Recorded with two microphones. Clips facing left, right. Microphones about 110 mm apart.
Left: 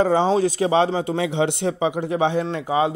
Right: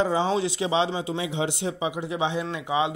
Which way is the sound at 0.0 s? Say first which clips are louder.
Left 6 dB; 50° left (ahead or behind).